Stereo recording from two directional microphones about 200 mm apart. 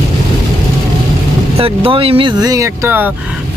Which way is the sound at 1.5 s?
30° right (ahead or behind).